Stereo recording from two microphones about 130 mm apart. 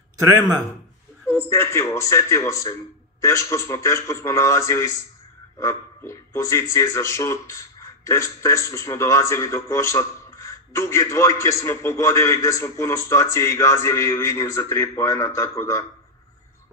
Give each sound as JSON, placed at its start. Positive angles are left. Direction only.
{"t": 0.2, "sound": "a man's voice", "side_deg": -25}
{"t": 1.2, "sound": "speech", "side_deg": 20}